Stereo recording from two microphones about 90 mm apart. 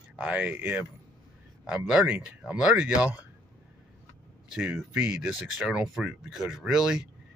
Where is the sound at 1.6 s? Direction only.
10° right (ahead or behind).